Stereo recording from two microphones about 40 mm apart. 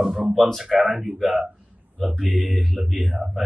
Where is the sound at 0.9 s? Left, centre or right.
Centre.